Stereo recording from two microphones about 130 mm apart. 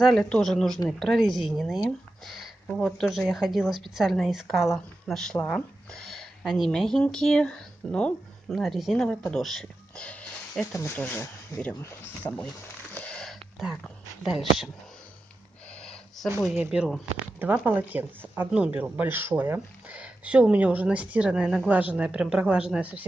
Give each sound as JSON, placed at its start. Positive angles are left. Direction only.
{"t": 0.0, "sound": "a woman's voice", "side_deg": 5}
{"t": 12.2, "sound": "speech", "side_deg": 30}
{"t": 12.9, "sound": "a sound", "side_deg": 10}
{"t": 14.2, "sound": "speech", "side_deg": -5}
{"t": 15.8, "sound": "a sound", "side_deg": 5}
{"t": 16.4, "sound": "speech", "side_deg": -5}